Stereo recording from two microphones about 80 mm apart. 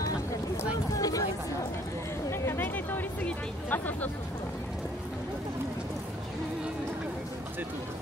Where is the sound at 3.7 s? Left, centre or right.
Left.